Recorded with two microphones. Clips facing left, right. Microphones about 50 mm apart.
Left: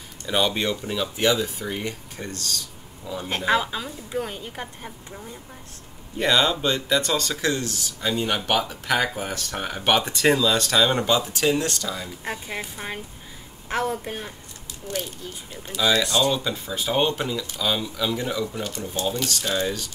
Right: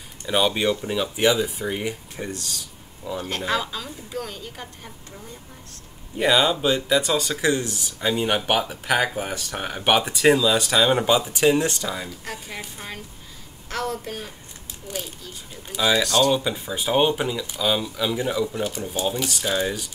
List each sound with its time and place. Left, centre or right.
0.3 s speech: centre
3.3 s a woman's voice: centre
6.1 s speech: centre
12.1 s a woman's voice: left
15.6 s speech: centre
16.0 s speech: centre
16.3 s speech: centre